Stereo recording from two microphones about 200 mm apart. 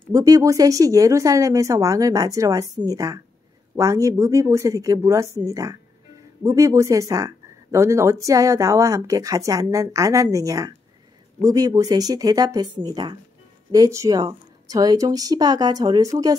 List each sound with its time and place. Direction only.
0.1 s speech: 20° right (ahead or behind)